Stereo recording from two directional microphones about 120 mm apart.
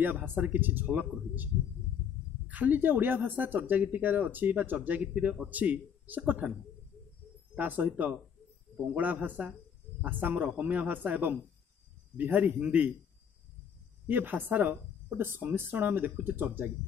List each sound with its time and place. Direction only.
0.0 s speech: 15° right (ahead or behind)
7.5 s speech: 15° right (ahead or behind)
14.0 s speech: 15° right (ahead or behind)